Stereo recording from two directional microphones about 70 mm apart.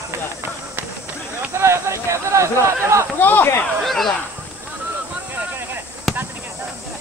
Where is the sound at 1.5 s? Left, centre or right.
Right.